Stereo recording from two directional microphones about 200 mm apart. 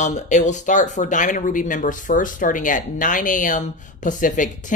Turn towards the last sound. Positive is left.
turn(degrees=40)  # may be behind; listen again after turning